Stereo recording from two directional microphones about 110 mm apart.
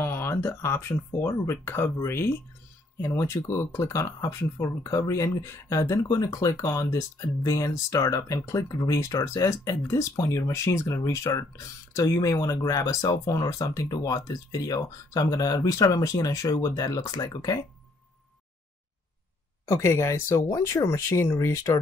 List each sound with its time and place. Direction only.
0.0 s speech: 20° left (ahead or behind)
19.7 s speech: 25° left (ahead or behind)